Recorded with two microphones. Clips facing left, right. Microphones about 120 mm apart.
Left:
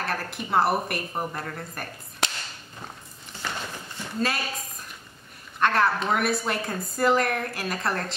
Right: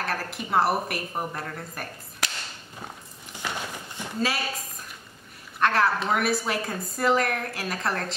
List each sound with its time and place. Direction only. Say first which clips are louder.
0.0 s a woman's voice: even; centre (ahead or behind)
2.2 s whip: left 3 dB; 25° left (ahead or behind)
3.4 s a sound: right 1 dB; 15° right (ahead or behind)
5.6 s a woman's voice: even; centre (ahead or behind)